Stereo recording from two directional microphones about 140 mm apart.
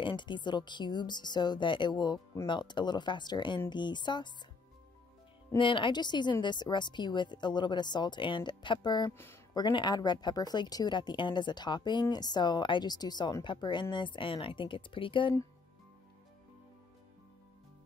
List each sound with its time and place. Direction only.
0.0 s speech: 35° left (ahead or behind)
5.6 s speech: 35° left (ahead or behind)